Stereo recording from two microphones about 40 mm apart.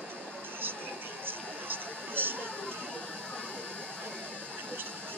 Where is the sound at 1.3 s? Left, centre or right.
Right.